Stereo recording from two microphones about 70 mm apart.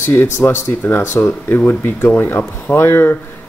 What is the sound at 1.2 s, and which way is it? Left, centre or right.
Speech, left.